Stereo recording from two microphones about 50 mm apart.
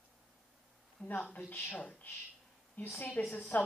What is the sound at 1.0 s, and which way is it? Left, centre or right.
Speech, left.